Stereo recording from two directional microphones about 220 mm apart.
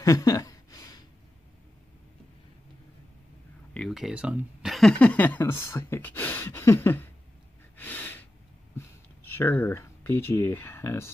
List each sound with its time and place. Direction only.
0.0 s a sound: 15° left (ahead or behind)
3.7 s speech: centre (ahead or behind)
7.7 s gasp: 10° left (ahead or behind)
9.3 s speech: 10° left (ahead or behind)